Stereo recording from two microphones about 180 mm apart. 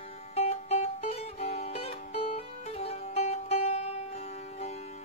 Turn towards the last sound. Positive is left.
turn(degrees=40)  # may be behind; listen again after turning